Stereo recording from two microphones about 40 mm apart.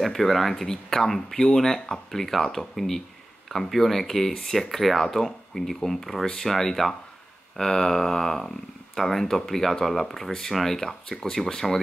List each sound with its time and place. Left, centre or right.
0.0 s speech: centre